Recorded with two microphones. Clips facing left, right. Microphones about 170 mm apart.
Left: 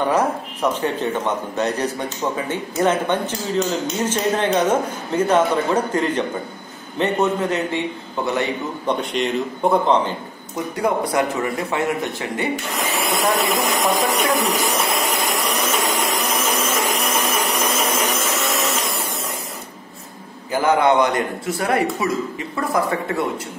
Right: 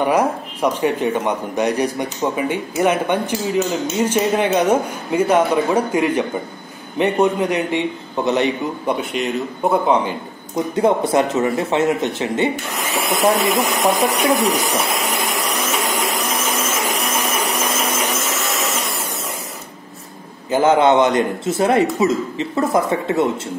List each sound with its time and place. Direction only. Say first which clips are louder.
0.0 s a man's voice: right 2 dB; 10° right (ahead or behind)
8.8 s a man's voice: left 1 dB; 5° right (ahead or behind)
10.8 s a man's voice: right 4 dB; 25° right (ahead or behind)
12.7 s vacuum cleaner: right 1 dB; centre (ahead or behind)
20.5 s a man's voice: right 3 dB; 20° right (ahead or behind)